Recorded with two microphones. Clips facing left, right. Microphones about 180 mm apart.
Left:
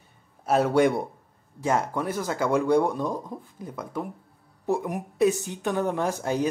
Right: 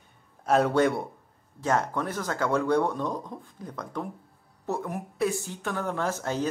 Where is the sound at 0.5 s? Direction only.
5° left (ahead or behind).